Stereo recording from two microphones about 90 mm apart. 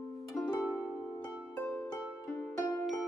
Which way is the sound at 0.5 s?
15° left (ahead or behind).